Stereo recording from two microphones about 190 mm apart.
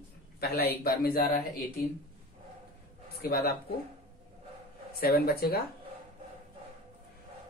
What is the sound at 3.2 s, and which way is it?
Speech, 55° left (ahead or behind).